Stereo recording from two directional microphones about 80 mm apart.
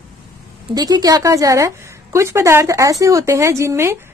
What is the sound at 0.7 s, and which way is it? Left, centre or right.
Speech, right.